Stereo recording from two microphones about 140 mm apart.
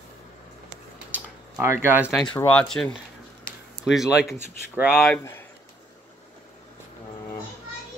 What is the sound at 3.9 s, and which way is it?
Speech, 5° right (ahead or behind).